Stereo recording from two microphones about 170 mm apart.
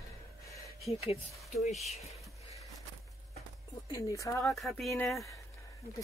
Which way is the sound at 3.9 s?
20° left (ahead or behind).